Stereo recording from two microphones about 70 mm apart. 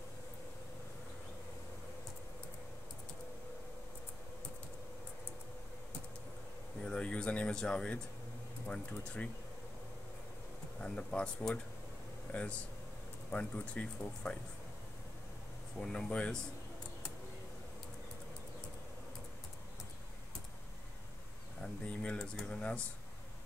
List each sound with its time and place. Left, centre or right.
6.8 s speech: centre
10.8 s speech: centre
15.8 s speech: centre
21.8 s speech: centre
22.2 s speech: centre
22.5 s speech: centre